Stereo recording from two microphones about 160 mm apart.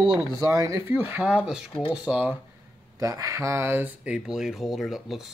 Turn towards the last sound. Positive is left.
turn(degrees=0)  # may be behind; listen again after turning